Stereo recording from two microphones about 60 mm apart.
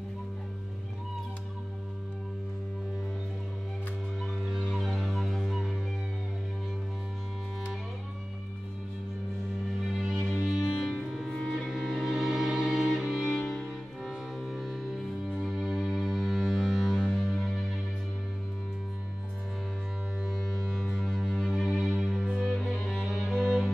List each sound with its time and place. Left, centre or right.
4.2 s music: centre
9.8 s music: centre
10.9 s music: centre
13.3 s music: centre
20.2 s music: centre